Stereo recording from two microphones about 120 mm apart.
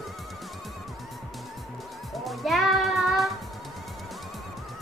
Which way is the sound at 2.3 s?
Centre (ahead or behind).